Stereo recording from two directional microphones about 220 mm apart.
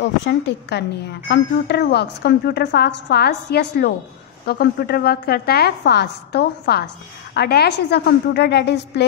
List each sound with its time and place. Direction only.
0.0 s a woman's voice: 50° left (ahead or behind)